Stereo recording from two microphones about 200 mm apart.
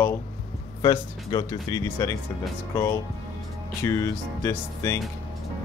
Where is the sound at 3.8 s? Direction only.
15° left (ahead or behind).